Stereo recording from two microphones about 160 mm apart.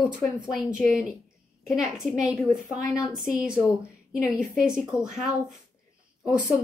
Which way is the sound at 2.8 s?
20° left (ahead or behind).